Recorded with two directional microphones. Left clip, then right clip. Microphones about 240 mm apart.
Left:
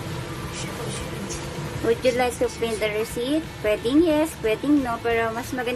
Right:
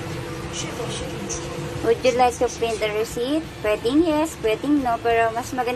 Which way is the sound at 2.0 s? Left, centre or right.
Centre.